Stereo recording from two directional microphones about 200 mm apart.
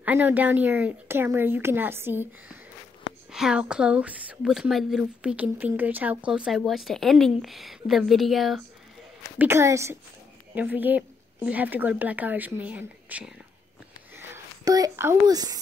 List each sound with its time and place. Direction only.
0.0 s speech: 10° right (ahead or behind)
9.4 s speech: 15° right (ahead or behind)